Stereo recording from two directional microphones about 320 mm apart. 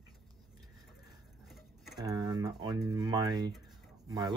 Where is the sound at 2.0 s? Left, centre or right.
Centre.